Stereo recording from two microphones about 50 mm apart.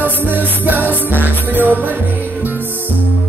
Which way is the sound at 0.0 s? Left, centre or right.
Right.